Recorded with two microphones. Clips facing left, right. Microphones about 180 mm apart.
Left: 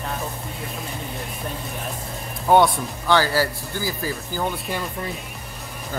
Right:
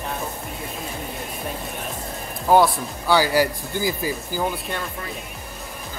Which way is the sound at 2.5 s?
5° right (ahead or behind).